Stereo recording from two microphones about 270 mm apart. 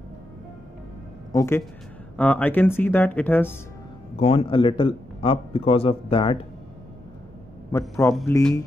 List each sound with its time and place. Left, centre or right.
1.3 s speech: centre
4.2 s a man's voice: left
7.7 s a man's voice: centre